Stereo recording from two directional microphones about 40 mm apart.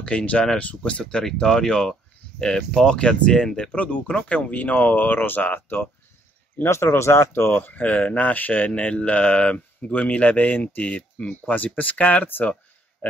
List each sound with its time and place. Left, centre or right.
0.0 s speech: left
1.2 s speech: centre
3.7 s speech: left
6.6 s speech: left
7.5 s speech: left
8.7 s speech: left